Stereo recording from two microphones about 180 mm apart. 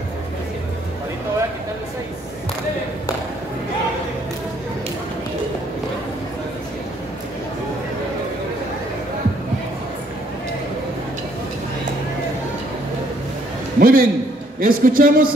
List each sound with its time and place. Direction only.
13.7 s a man's voice: 55° right (ahead or behind)